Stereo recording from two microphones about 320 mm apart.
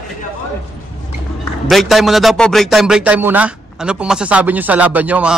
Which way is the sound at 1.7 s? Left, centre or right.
Centre.